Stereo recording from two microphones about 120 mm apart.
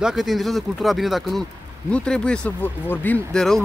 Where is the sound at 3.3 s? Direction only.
5° left (ahead or behind).